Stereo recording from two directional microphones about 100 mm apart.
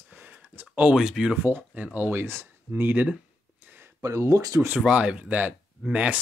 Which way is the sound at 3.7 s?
20° right (ahead or behind).